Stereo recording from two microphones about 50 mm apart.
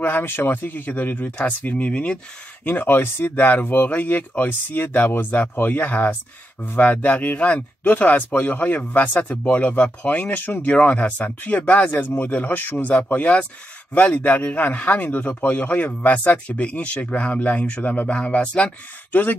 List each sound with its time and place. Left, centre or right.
0.0 s speech: left
2.6 s speech: left
19.1 s speech: left